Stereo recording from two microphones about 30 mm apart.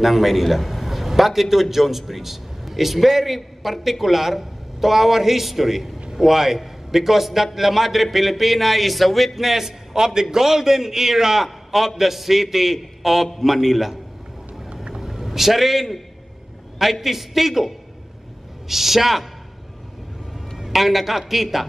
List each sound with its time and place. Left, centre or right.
0.0 s a man's voice: centre
11.4 s a sound: centre
12.0 s a man's voice: centre
15.0 s a man's voice: centre
17.0 s a man's voice: centre
20.3 s a man's voice: centre